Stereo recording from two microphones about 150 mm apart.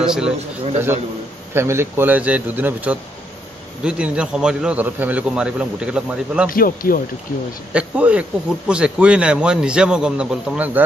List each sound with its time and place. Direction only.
0.0 s a man's voice: 5° right (ahead or behind)
1.5 s speech: 15° right (ahead or behind)
6.5 s speech: 70° left (ahead or behind)
7.7 s speech: 10° right (ahead or behind)